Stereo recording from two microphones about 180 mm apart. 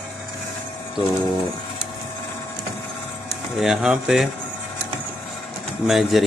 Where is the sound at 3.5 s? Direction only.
5° right (ahead or behind).